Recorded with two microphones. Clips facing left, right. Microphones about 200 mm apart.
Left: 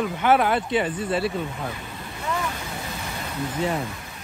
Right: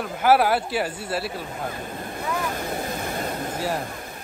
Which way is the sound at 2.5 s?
55° right (ahead or behind).